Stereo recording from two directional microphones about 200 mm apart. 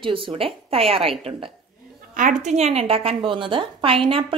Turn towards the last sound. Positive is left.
turn(degrees=-25)  # may be behind; listen again after turning